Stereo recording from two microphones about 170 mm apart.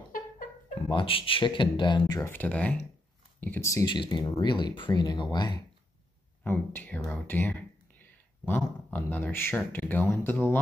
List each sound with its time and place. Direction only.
0.8 s speech: 30° left (ahead or behind)
6.4 s speech: 10° left (ahead or behind)